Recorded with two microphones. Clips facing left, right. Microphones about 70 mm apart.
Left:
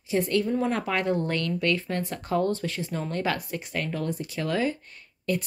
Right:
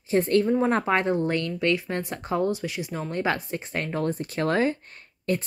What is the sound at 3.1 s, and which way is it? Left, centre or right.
Speech, right.